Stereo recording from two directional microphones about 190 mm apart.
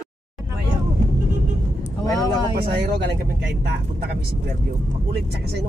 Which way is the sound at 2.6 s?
55° right (ahead or behind).